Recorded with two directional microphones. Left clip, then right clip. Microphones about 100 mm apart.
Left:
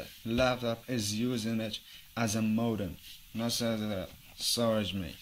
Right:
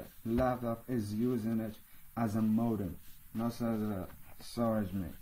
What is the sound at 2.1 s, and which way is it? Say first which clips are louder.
Speech: left 2 dB; 50° left (ahead or behind).